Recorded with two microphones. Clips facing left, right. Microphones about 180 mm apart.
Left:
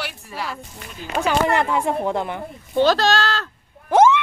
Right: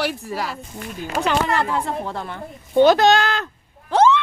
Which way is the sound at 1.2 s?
15° left (ahead or behind).